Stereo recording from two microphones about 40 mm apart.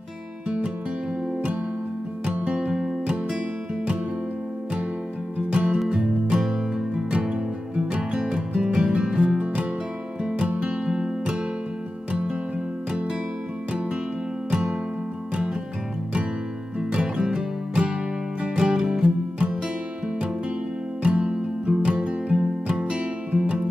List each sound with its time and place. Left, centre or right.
2.2 s music: right
2.7 s music: centre
5.5 s music: right
14.5 s music: right
16.9 s music: right
19.0 s music: right
21.0 s music: right